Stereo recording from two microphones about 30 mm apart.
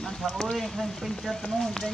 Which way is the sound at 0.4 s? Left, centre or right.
Centre.